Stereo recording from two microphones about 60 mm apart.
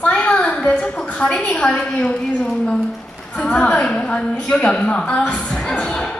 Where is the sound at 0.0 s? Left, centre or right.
Left.